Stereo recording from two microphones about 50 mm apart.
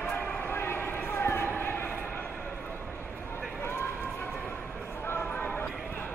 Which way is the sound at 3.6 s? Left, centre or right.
Left.